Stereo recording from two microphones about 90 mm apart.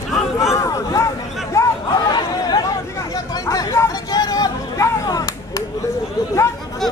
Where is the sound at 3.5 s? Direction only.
40° left (ahead or behind).